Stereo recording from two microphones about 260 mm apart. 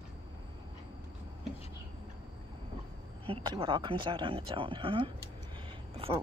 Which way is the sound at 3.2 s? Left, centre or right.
Centre.